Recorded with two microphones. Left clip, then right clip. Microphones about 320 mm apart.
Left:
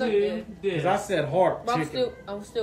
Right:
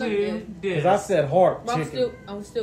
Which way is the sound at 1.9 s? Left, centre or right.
Centre.